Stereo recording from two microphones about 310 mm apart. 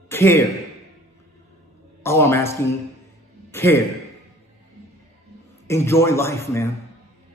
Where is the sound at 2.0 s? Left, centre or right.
Centre.